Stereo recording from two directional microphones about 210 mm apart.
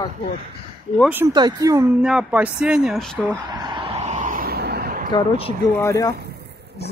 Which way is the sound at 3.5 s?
20° right (ahead or behind).